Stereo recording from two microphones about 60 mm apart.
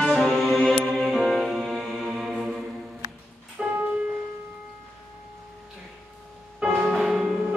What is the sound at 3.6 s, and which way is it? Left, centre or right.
Music, centre.